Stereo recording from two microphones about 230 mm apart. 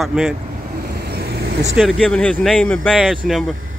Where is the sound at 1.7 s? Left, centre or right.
Centre.